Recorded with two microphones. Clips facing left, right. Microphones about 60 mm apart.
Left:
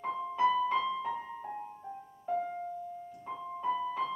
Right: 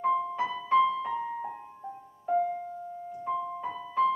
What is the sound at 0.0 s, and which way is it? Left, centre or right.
Music, centre.